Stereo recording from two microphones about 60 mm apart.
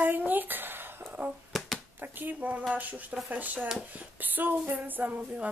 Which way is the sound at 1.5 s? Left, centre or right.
Centre.